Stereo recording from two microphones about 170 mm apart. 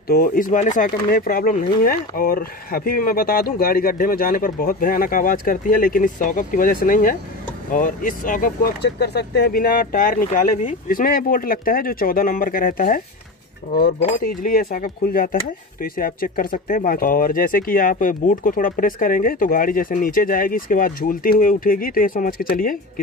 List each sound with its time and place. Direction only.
0.1 s speech: 55° left (ahead or behind)